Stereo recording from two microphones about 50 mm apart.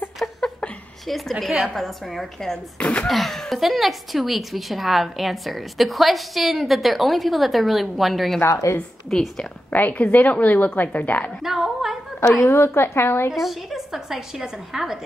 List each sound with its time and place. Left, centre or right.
0.2 s a sound: centre
1.7 s a woman's voice: centre
2.8 s speech: left
3.1 s a woman's voice: centre
8.5 s a woman's voice: left
9.1 s a woman's voice: centre
9.7 s a woman's voice: left
11.4 s a sound: centre
12.2 s a woman's voice: left
13.3 s a woman's voice: centre